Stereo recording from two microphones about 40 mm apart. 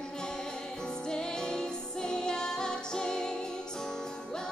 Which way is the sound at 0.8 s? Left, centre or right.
Centre.